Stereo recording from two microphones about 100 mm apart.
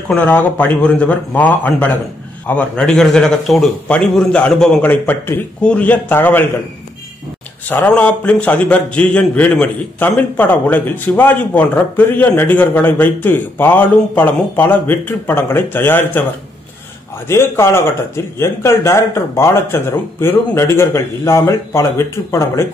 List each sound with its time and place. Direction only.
0.1 s a man's voice: 15° left (ahead or behind)
4.8 s a man's voice: 20° left (ahead or behind)
7.6 s a man's voice: 15° left (ahead or behind)
17.3 s speech: 25° left (ahead or behind)